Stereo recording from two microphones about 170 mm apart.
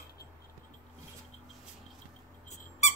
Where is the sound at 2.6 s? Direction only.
40° left (ahead or behind).